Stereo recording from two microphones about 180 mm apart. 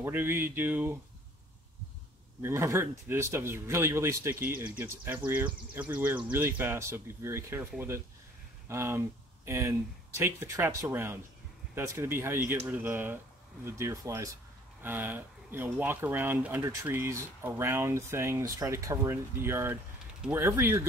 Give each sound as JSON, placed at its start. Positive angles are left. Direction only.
{"t": 0.0, "sound": "speech", "side_deg": -15}
{"t": 2.4, "sound": "speech", "side_deg": -15}